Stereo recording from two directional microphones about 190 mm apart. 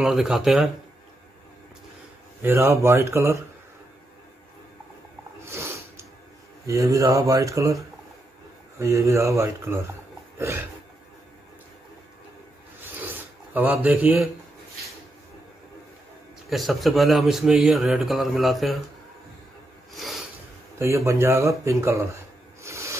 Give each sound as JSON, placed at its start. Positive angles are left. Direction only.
{"t": 0.0, "sound": "speech", "side_deg": 0}
{"t": 2.4, "sound": "speech", "side_deg": -15}
{"t": 5.4, "sound": "a sound", "side_deg": -15}
{"t": 6.6, "sound": "speech", "side_deg": -15}
{"t": 12.8, "sound": "filing", "side_deg": -10}
{"t": 16.4, "sound": "speech", "side_deg": 0}
{"t": 20.8, "sound": "speech", "side_deg": -15}
{"t": 22.6, "sound": "a sound", "side_deg": -15}